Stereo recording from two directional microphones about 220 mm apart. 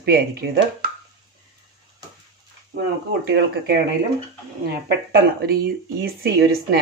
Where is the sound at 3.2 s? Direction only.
45° right (ahead or behind).